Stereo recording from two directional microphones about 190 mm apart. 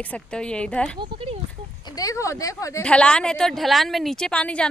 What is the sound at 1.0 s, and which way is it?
Speech, 30° right (ahead or behind).